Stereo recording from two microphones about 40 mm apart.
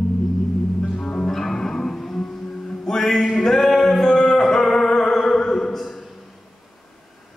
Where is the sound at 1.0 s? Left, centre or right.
Centre.